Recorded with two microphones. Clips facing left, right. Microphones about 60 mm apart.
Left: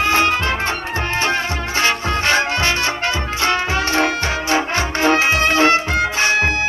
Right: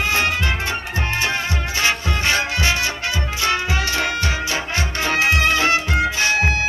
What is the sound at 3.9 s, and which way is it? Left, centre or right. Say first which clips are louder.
Music: left 4 dB; left.